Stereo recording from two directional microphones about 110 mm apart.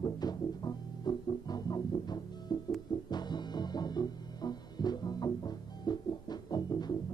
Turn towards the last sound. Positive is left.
turn(degrees=40)  # may be behind; listen again after turning